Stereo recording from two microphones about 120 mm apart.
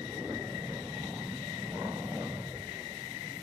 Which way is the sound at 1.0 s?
10° right (ahead or behind).